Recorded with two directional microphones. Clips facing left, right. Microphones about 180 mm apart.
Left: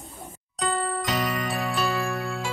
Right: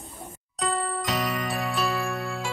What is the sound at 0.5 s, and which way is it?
Music, centre (ahead or behind).